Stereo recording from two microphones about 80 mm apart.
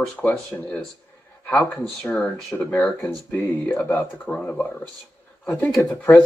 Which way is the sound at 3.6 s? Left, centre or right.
Left.